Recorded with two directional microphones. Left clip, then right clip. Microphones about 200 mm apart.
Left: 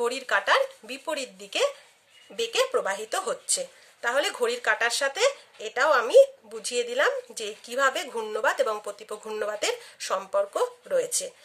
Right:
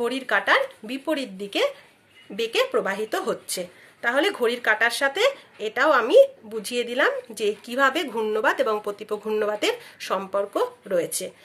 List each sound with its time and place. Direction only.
0.0 s speech: 40° left (ahead or behind)